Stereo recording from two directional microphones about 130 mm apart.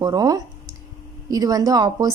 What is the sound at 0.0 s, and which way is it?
A woman's voice, 30° right (ahead or behind).